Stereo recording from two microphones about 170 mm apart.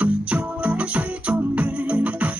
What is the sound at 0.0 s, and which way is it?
Music, 10° right (ahead or behind).